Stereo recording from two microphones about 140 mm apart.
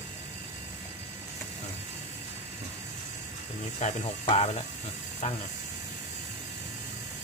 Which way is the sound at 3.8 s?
55° left (ahead or behind).